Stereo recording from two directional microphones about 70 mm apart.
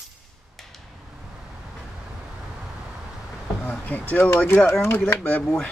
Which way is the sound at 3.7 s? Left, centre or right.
Left.